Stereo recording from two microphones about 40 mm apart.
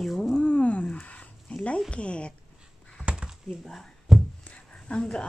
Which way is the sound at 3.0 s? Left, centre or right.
Right.